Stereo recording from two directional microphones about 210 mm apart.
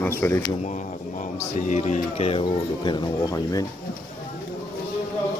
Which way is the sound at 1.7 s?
35° left (ahead or behind).